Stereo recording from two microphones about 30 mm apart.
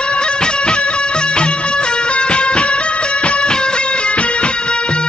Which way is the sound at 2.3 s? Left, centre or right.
Left.